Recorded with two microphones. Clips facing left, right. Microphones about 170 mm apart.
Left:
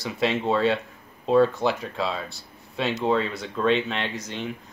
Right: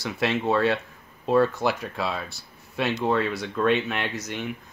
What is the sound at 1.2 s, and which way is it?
Speech, 5° right (ahead or behind).